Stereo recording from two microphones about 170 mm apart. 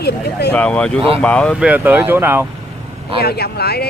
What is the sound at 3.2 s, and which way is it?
Speech, 70° left (ahead or behind).